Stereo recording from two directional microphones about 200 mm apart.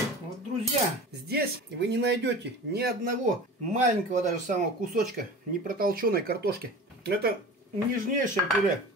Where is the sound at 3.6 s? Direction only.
35° right (ahead or behind); by 7.3 s 50° right (ahead or behind).